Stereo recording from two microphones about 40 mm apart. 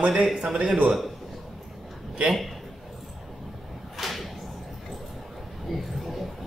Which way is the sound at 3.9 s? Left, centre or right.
Centre.